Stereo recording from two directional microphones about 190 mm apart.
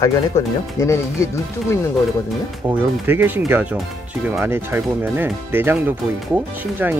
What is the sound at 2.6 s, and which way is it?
Speech, 15° right (ahead or behind).